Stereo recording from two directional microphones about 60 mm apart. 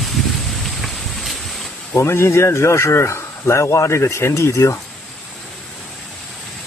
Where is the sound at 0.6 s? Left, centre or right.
Centre.